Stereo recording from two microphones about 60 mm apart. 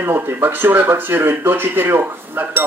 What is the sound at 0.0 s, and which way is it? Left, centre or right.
Speech, right.